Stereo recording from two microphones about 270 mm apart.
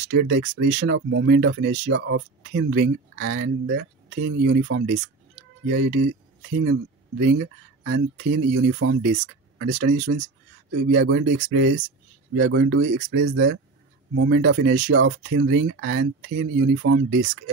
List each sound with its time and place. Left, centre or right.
0.1 s speech: right
5.7 s speech: right